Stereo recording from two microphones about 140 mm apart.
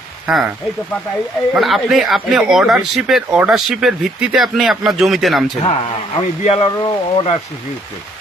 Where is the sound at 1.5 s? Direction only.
Centre (ahead or behind).